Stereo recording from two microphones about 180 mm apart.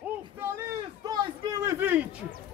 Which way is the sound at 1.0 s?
20° right (ahead or behind).